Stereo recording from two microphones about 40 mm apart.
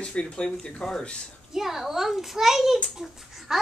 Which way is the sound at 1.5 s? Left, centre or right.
Centre.